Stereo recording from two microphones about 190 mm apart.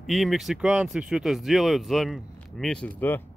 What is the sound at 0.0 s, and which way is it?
Speech, centre (ahead or behind).